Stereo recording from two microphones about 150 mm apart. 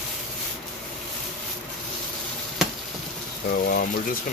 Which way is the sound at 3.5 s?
75° left (ahead or behind).